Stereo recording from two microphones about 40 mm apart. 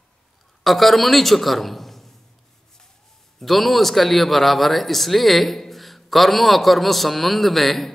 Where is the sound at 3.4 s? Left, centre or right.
Centre.